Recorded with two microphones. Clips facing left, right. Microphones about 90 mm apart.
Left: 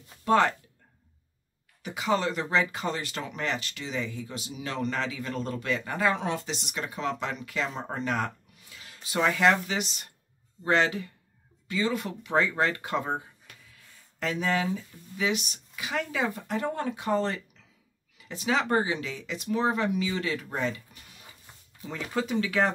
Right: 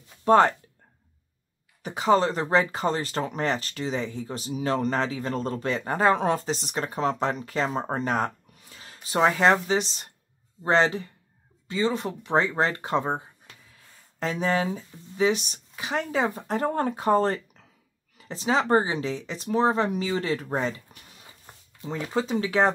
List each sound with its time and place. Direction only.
0.2 s speech: 35° right (ahead or behind)
1.8 s speech: 40° right (ahead or behind)
21.5 s a sound: 50° right (ahead or behind)
21.9 s speech: 25° right (ahead or behind)